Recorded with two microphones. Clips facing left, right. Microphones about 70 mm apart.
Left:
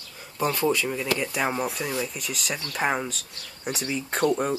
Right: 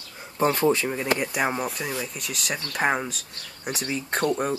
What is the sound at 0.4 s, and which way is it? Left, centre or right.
Speech, right.